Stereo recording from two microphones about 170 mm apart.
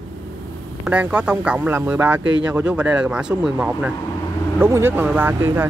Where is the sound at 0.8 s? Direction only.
5° right (ahead or behind).